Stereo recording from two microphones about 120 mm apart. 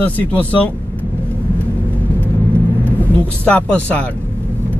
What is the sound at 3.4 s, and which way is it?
Speech, 10° left (ahead or behind).